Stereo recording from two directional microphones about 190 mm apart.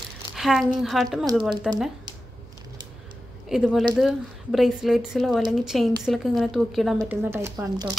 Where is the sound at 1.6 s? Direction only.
Centre (ahead or behind).